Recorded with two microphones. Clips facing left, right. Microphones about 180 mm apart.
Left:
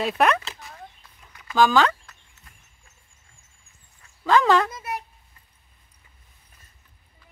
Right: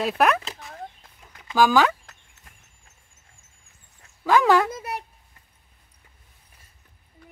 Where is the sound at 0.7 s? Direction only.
55° right (ahead or behind).